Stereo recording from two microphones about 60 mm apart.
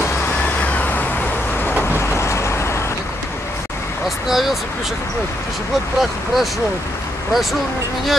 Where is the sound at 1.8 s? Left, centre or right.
Left.